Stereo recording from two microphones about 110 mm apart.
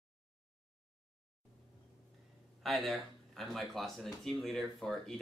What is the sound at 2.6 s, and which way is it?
Speech, centre (ahead or behind).